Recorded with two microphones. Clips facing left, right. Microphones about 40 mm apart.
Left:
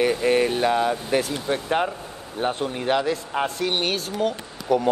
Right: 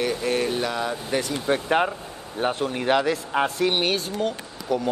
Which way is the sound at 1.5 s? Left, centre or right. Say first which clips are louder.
Right 3 dB; centre.